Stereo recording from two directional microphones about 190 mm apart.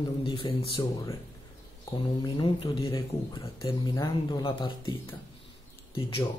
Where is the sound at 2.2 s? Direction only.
25° left (ahead or behind).